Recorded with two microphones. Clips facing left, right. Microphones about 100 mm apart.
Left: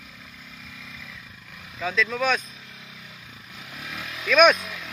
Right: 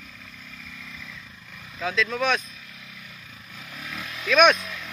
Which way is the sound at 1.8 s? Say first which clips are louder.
Even; centre (ahead or behind).